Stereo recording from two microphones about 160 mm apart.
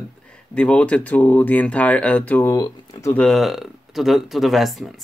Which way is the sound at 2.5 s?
20° left (ahead or behind).